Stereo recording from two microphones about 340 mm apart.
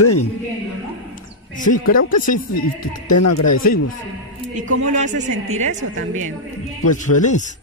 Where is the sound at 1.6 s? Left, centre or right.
Left.